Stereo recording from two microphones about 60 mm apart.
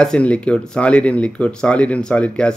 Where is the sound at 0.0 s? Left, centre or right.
Centre.